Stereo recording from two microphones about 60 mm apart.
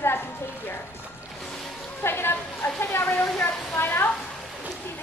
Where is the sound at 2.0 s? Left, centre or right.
Left.